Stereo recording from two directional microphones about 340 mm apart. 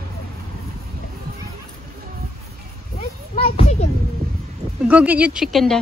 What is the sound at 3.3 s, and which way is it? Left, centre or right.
Children playing, centre.